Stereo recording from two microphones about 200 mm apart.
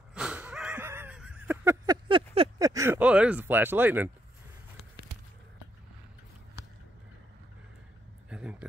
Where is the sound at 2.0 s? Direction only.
25° right (ahead or behind).